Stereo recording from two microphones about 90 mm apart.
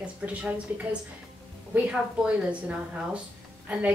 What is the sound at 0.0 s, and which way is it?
Speech, 15° right (ahead or behind).